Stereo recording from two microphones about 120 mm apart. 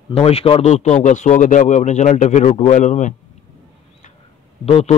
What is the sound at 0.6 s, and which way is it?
Speech, 70° left (ahead or behind).